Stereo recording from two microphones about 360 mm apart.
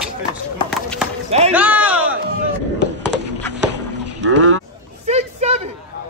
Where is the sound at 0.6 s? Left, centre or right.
Centre.